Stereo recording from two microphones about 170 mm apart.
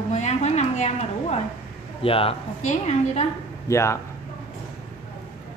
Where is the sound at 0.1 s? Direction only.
40° left (ahead or behind).